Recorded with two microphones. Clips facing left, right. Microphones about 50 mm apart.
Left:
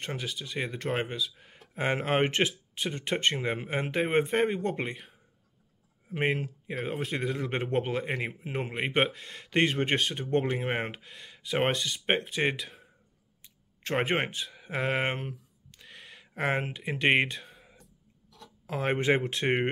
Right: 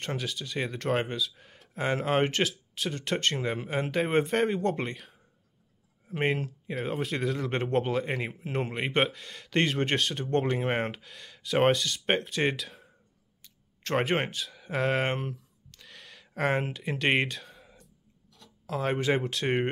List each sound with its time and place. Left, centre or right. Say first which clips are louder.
0.0 s speech: right 2 dB; centre
1.8 s speech: even; left
2.4 s speech: even; centre
13.4 s speech: left 1 dB; centre
15.7 s a sound: left 1 dB; centre
16.7 s speech: left 1 dB; centre
18.7 s speech: left 1 dB; left